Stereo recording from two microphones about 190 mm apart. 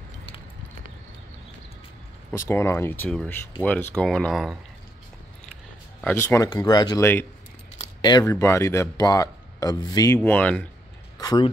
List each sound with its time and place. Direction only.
2.3 s speech: 10° left (ahead or behind)
5.9 s speech: 10° left (ahead or behind)
11.1 s a sound: 20° left (ahead or behind)